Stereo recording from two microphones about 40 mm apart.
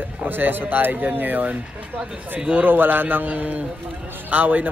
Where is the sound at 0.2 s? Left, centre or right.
Right.